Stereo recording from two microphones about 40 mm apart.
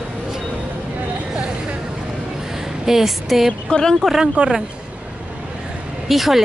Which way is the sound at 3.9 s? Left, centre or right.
Centre.